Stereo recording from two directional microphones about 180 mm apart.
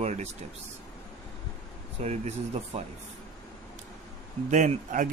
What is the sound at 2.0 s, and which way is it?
Speech, 40° right (ahead or behind).